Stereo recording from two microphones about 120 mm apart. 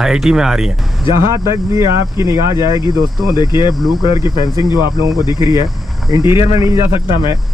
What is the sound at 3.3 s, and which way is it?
Speech, 35° left (ahead or behind).